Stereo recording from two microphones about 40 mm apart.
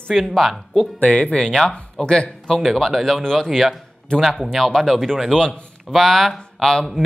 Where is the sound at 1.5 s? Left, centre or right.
Centre.